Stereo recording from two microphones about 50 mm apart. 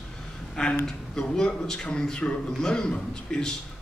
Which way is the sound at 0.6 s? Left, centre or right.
Centre.